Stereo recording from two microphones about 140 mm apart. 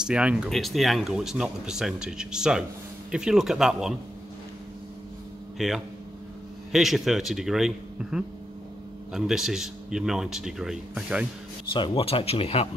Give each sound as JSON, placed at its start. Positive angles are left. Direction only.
{"t": 0.0, "sound": "speech", "side_deg": -5}
{"t": 5.6, "sound": "speech", "side_deg": 0}
{"t": 11.7, "sound": "speech", "side_deg": 35}